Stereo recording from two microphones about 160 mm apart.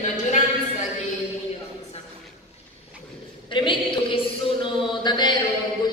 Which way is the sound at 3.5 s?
30° left (ahead or behind).